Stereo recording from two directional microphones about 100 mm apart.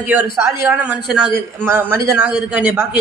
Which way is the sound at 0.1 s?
20° right (ahead or behind).